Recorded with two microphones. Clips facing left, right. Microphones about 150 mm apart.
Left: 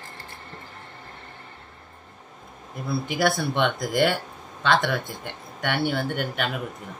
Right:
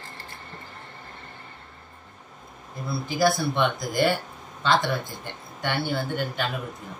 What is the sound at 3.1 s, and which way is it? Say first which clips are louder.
Speech: right 2 dB; 70° left (ahead or behind).